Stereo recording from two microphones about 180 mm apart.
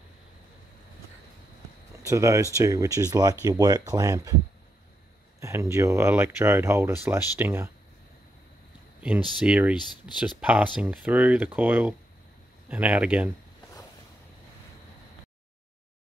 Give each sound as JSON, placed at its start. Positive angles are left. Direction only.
{"t": 2.0, "sound": "speech", "side_deg": -15}
{"t": 5.4, "sound": "speech", "side_deg": -15}
{"t": 9.4, "sound": "speech", "side_deg": -5}
{"t": 9.8, "sound": "speech", "side_deg": 25}
{"t": 10.3, "sound": "speech", "side_deg": -5}